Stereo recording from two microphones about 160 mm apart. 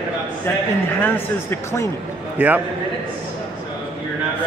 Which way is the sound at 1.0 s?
15° left (ahead or behind).